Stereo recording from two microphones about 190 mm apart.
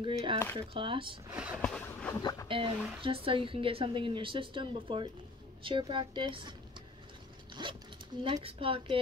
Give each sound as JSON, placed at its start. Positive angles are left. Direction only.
{"t": 0.0, "sound": "a woman's voice", "side_deg": -25}
{"t": 1.3, "sound": "a sound", "side_deg": -10}
{"t": 1.6, "sound": "a sound", "side_deg": 5}
{"t": 2.1, "sound": "speech", "side_deg": 20}
{"t": 2.4, "sound": "a woman's voice", "side_deg": -25}
{"t": 7.6, "sound": "a woman's voice", "side_deg": -25}